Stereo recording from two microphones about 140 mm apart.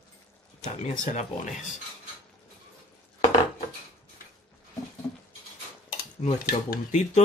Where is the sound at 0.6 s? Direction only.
55° left (ahead or behind).